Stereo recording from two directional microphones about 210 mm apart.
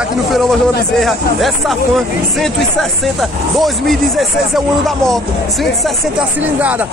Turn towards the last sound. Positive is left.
turn(degrees=0)  # may be behind; listen again after turning